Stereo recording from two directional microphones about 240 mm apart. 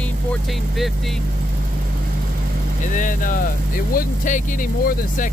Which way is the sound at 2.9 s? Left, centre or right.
Left.